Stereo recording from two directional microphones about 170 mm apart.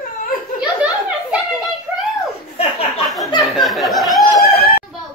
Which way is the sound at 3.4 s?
Centre (ahead or behind).